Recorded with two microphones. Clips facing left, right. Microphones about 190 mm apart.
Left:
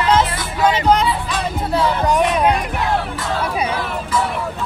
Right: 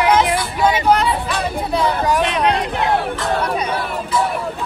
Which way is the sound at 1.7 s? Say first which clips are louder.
Left 1 dB; 15° right (ahead or behind).